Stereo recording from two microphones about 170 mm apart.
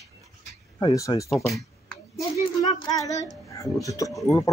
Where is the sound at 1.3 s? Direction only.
Centre (ahead or behind).